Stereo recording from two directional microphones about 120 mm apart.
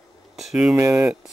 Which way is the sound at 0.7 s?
20° right (ahead or behind).